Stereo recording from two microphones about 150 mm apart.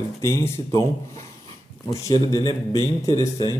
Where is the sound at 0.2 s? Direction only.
20° left (ahead or behind).